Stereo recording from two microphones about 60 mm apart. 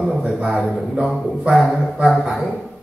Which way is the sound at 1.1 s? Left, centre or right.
Centre.